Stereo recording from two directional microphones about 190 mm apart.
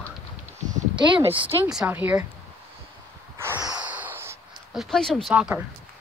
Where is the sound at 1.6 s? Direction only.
5° right (ahead or behind).